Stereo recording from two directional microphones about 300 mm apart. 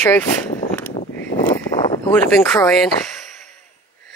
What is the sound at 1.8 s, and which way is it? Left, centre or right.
Speech, centre.